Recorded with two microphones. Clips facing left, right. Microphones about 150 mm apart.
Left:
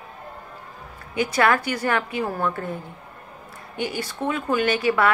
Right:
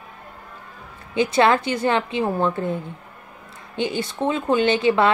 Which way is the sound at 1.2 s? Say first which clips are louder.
Right 3 dB; 25° right (ahead or behind).